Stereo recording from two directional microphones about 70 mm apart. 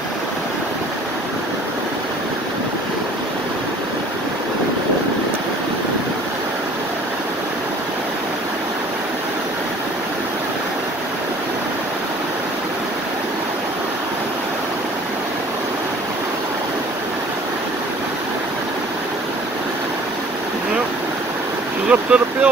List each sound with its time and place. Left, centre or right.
21.8 s boat: centre